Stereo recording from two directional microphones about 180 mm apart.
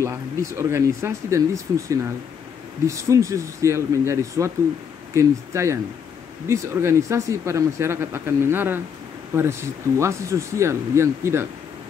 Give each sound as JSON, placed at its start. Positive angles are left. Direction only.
{"t": 0.0, "sound": "speech", "side_deg": -15}